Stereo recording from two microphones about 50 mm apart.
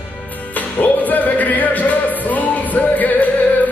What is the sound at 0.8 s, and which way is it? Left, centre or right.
Music, left.